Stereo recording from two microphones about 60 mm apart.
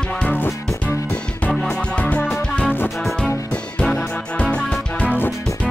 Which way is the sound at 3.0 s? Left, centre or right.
Centre.